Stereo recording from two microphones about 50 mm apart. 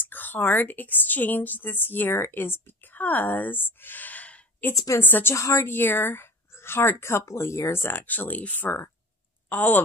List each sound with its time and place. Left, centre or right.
0.0 s a woman's voice: left
2.1 s speech: left
2.9 s a woman's voice: left
4.7 s a woman's voice: left
5.0 s speech: left
5.3 s a woman's voice: left
5.7 s speech: left
7.8 s a woman's voice: left